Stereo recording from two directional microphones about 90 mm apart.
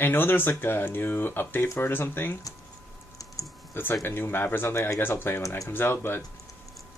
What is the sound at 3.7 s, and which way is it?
Speech, 25° left (ahead or behind).